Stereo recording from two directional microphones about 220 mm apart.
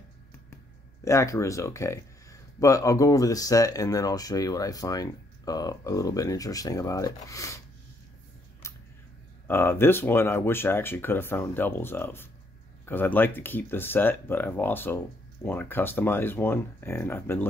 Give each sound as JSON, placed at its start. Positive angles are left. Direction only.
{"t": 1.0, "sound": "speech", "side_deg": 15}
{"t": 8.6, "sound": "a sound", "side_deg": 15}
{"t": 9.5, "sound": "speech", "side_deg": 10}